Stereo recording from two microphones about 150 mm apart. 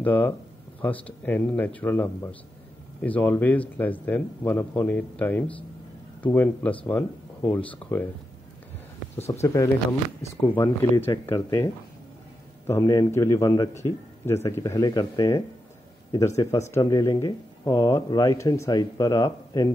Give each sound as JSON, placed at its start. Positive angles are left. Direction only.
{"t": 0.0, "sound": "a man's voice", "side_deg": 10}
{"t": 9.3, "sound": "speech", "side_deg": 20}